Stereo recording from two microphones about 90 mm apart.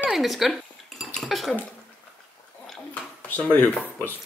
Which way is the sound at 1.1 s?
Centre (ahead or behind).